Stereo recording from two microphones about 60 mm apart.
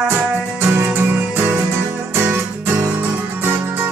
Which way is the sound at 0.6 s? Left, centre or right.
Right.